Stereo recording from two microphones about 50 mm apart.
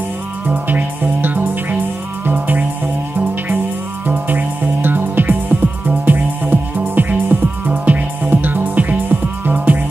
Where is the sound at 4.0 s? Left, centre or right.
Right.